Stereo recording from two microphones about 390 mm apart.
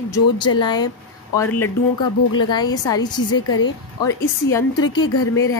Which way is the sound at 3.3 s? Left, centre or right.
Left.